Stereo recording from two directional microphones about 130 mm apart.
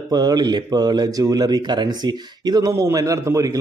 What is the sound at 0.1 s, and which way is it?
A man's voice, 30° right (ahead or behind).